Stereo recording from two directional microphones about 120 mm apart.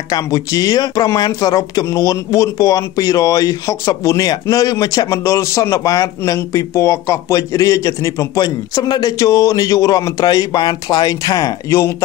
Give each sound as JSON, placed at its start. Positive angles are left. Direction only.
{"t": 0.1, "sound": "speech", "side_deg": 30}